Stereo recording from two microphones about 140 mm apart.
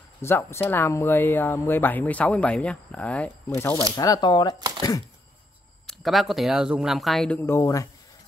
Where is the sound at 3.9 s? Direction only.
25° left (ahead or behind).